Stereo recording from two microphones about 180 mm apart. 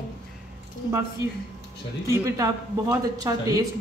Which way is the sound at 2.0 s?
15° right (ahead or behind).